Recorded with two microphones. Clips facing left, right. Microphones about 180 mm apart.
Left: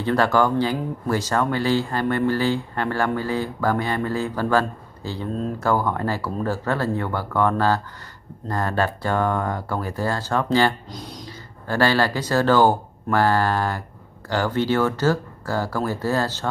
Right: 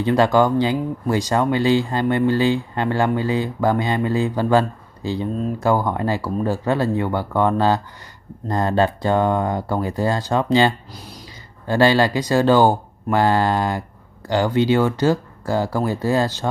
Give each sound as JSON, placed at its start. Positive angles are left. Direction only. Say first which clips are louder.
{"t": 0.0, "sound": "speech", "louder": "right 3 dB", "side_deg": -15}
{"t": 10.9, "sound": "speech", "louder": "left 3 dB", "side_deg": -5}
{"t": 11.6, "sound": "speech", "louder": "right 4 dB", "side_deg": -20}